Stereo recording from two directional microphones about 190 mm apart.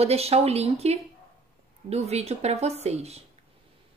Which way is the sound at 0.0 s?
30° right (ahead or behind).